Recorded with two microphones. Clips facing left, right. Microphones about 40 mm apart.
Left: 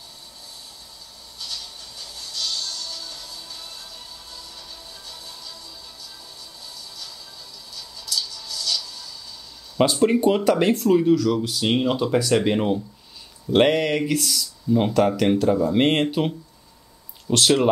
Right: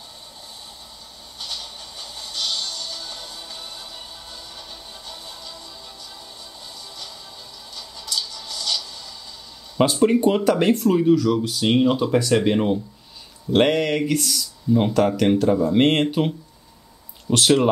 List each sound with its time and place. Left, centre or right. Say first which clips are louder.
1.4 s music: right 2 dB; right
7.7 s a sound: even; right
9.8 s speech: right 1 dB; centre